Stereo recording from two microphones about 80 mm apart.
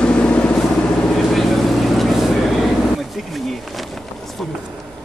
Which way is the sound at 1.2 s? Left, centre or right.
Centre.